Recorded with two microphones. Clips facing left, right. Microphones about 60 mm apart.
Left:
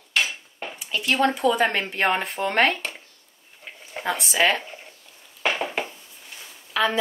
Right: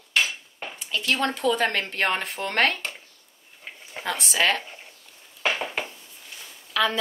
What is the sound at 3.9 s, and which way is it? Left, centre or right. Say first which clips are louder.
Speech: left 3 dB; centre.